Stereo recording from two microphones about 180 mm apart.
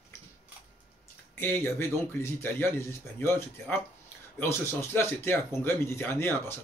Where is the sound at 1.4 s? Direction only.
10° left (ahead or behind).